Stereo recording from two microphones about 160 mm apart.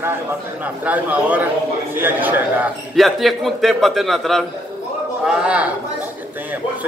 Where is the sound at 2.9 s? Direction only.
Centre (ahead or behind).